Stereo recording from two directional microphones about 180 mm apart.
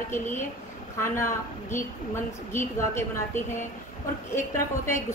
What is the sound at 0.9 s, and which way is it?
A woman's voice, 15° left (ahead or behind).